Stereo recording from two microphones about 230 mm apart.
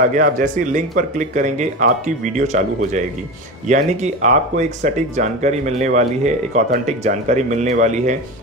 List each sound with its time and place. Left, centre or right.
0.1 s speech: right